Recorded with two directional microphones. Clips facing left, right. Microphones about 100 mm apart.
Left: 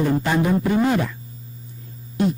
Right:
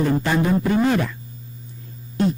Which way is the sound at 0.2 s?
10° left (ahead or behind).